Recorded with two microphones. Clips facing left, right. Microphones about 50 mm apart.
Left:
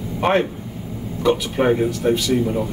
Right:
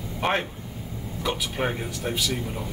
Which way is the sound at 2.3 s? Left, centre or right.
Left.